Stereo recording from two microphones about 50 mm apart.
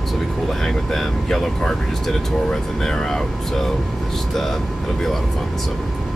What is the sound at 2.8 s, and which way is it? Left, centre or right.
Speech, centre.